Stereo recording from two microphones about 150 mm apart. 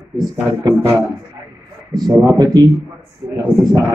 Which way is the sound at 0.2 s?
25° right (ahead or behind).